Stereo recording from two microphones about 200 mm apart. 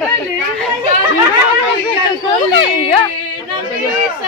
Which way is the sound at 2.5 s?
25° left (ahead or behind).